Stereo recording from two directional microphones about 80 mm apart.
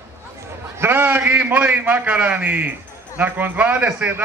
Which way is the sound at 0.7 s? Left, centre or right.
Right.